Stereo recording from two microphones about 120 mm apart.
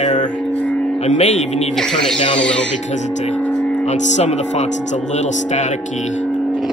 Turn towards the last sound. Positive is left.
turn(degrees=75)  # may be behind; listen again after turning